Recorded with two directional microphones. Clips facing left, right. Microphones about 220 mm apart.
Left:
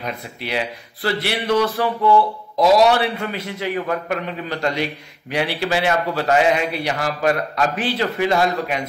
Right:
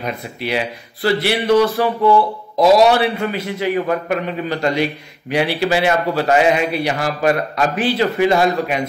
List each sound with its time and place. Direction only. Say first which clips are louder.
0.0 s a man's voice: right 4 dB; 10° right (ahead or behind)